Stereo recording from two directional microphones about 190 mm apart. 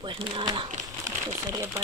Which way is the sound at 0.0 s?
25° right (ahead or behind).